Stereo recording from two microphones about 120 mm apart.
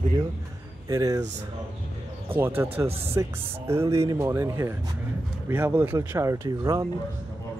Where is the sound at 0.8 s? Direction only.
30° right (ahead or behind).